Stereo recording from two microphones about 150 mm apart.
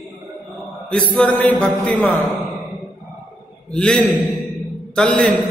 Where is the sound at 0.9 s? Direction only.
5° left (ahead or behind).